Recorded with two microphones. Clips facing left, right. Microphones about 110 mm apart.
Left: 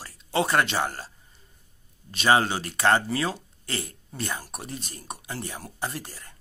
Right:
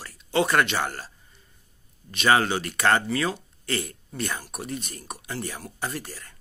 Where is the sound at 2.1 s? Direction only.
30° left (ahead or behind).